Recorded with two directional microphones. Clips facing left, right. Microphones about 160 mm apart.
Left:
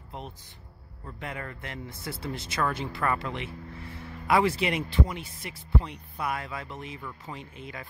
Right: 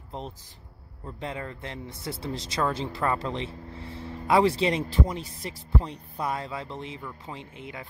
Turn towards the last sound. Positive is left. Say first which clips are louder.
# right 1 dB
turn(degrees=-20)  # may be behind; listen again after turning